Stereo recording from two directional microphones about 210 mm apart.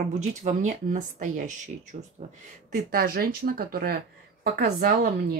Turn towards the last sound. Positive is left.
turn(degrees=-45)  # may be behind; listen again after turning